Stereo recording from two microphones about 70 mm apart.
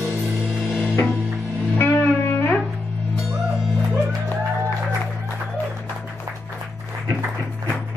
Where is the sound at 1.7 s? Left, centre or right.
Left.